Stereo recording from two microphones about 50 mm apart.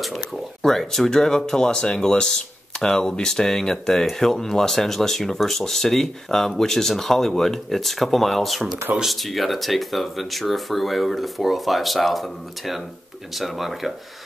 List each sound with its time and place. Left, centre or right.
0.0 s speech: centre